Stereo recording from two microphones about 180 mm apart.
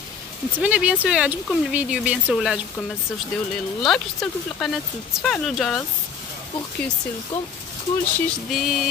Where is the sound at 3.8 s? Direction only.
5° left (ahead or behind).